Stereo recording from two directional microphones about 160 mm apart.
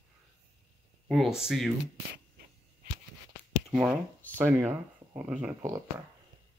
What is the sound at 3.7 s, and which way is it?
Speech, 10° right (ahead or behind).